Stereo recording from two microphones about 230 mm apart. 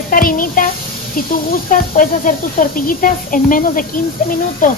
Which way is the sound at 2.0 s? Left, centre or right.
Left.